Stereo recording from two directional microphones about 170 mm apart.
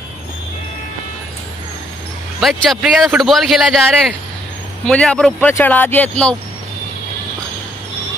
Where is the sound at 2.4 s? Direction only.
Centre (ahead or behind).